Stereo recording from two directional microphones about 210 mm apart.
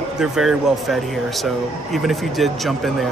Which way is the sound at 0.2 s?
Centre (ahead or behind).